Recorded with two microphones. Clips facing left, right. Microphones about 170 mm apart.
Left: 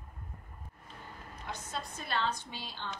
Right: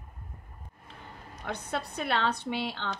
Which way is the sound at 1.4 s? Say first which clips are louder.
Right 7 dB; 65° right (ahead or behind).